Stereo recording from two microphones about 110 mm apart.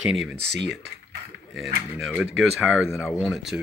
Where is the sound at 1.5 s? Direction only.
Centre (ahead or behind).